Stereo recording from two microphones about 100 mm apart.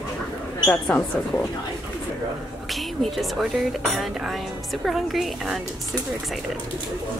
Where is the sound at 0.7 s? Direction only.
15° left (ahead or behind).